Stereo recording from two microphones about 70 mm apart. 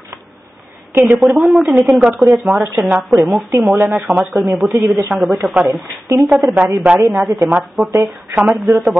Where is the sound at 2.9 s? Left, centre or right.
Right.